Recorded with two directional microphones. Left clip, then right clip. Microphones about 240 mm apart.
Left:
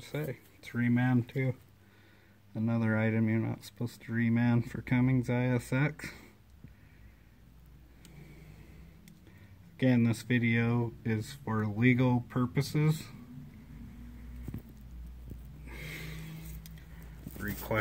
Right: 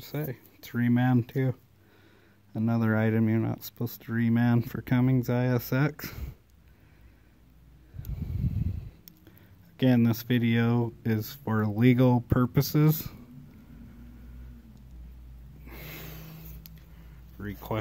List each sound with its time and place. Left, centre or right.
0.0 s speech: centre
9.8 s speech: centre
15.6 s snort: centre
17.4 s speech: centre